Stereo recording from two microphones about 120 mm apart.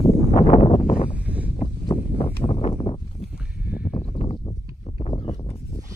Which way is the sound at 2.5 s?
60° left (ahead or behind).